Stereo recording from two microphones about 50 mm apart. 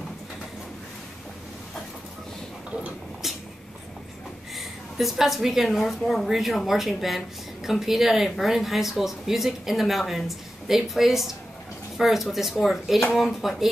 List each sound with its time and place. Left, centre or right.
4.6 s a woman's voice: centre